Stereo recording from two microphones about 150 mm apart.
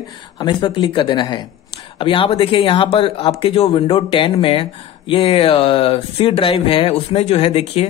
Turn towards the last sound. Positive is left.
turn(degrees=45)  # may be behind; listen again after turning